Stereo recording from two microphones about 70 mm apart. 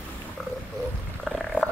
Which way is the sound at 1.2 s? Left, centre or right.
Centre.